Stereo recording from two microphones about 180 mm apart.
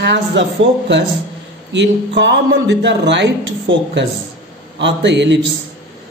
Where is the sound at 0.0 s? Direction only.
80° right.